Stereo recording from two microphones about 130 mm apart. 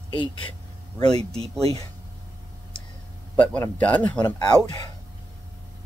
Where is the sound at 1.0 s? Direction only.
55° right (ahead or behind).